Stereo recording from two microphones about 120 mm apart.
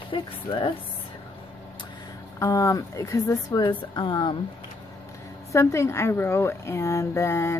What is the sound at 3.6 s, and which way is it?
Speech, 40° left (ahead or behind).